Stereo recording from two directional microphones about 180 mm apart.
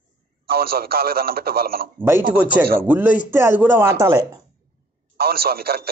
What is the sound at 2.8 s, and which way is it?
Speech, 10° right (ahead or behind).